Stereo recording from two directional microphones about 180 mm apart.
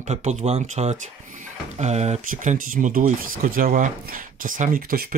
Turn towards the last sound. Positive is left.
turn(degrees=-55)  # may be behind; listen again after turning